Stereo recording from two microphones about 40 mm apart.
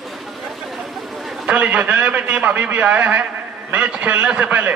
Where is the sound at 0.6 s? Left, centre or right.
Centre.